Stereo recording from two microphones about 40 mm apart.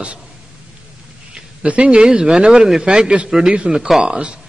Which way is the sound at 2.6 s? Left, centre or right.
Centre.